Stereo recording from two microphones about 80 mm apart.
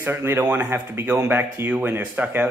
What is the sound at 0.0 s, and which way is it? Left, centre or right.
Speech, right.